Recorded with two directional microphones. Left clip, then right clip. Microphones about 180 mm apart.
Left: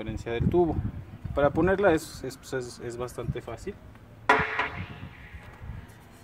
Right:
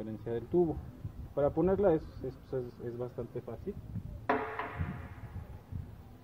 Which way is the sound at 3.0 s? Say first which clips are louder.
Left 5 dB; 55° left (ahead or behind).